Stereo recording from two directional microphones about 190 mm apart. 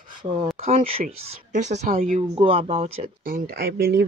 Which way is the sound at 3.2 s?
50° right (ahead or behind).